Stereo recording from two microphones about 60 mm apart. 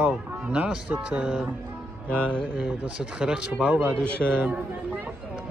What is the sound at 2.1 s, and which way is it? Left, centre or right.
Mantra, centre.